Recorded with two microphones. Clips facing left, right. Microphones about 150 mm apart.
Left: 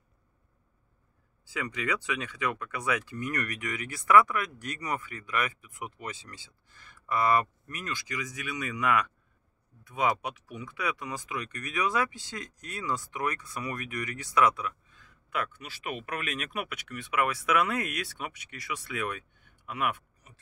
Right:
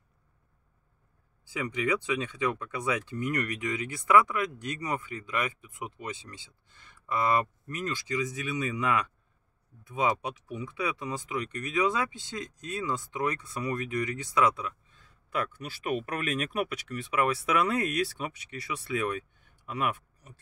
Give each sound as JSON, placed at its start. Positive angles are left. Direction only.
{"t": 1.5, "sound": "speech", "side_deg": -20}